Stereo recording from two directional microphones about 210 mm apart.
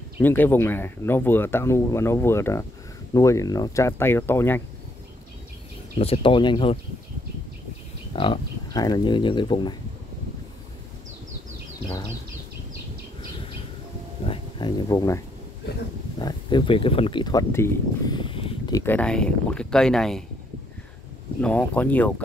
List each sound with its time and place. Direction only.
0.2 s speech: 10° left (ahead or behind)
5.9 s speech: 25° left (ahead or behind)
8.2 s speech: 20° left (ahead or behind)
14.2 s a sound: 25° left (ahead or behind)
16.2 s speech: 20° left (ahead or behind); by 20.2 s centre (ahead or behind)
21.4 s speech: 5° left (ahead or behind)